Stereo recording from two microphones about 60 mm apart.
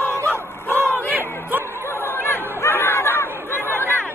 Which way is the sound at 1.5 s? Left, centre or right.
Right.